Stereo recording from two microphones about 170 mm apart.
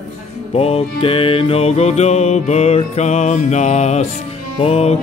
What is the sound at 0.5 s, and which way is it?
Music, 35° left (ahead or behind).